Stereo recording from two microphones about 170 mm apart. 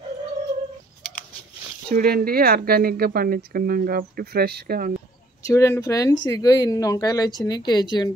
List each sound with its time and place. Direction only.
2.0 s speech: 60° right (ahead or behind)
5.4 s speech: 15° left (ahead or behind)